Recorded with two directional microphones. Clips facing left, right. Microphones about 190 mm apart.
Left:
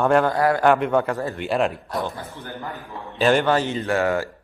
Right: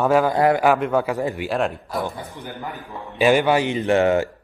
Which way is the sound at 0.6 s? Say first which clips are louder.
Even; 5° right (ahead or behind).